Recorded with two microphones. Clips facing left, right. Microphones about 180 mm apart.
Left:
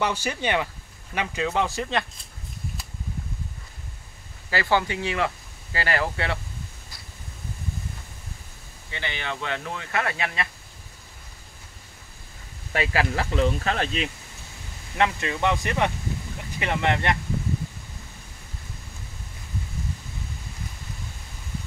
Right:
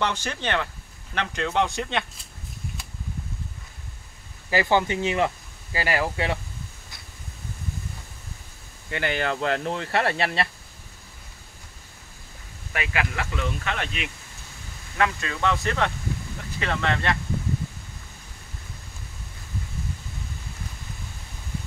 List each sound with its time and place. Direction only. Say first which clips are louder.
0.0 s speech: left 1 dB; 10° left (ahead or behind)
4.5 s speech: right 2 dB; 15° right (ahead or behind)
8.9 s speech: right 6 dB; 45° right (ahead or behind)
12.7 s speech: left 4 dB; 30° left (ahead or behind)
15.0 s speech: left 1 dB; 20° left (ahead or behind)